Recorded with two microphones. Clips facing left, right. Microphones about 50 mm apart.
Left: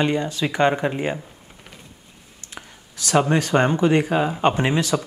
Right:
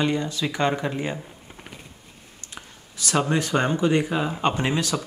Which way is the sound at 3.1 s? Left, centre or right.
Left.